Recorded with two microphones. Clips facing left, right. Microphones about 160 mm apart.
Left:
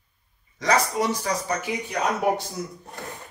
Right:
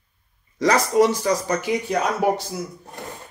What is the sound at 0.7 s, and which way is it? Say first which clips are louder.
Speech: right 4 dB; centre (ahead or behind).